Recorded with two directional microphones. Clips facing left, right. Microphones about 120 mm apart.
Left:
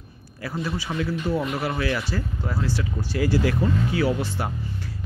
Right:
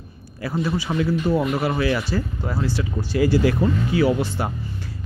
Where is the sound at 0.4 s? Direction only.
25° right (ahead or behind).